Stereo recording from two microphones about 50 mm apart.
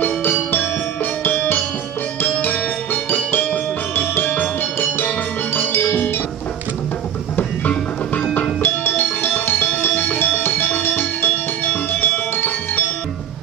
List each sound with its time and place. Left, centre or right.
0.0 s music: left
7.3 s music: left
8.6 s music: left